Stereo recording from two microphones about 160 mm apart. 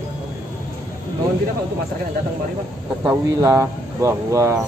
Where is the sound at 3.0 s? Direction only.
20° right (ahead or behind).